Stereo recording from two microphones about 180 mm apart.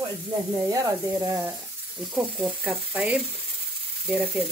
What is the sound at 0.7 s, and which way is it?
Speech, 20° right (ahead or behind).